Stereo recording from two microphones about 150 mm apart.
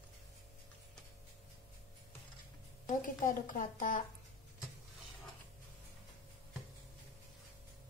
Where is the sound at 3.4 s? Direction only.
60° left (ahead or behind).